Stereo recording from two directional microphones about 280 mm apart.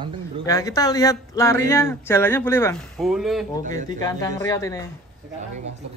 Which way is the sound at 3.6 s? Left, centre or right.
Right.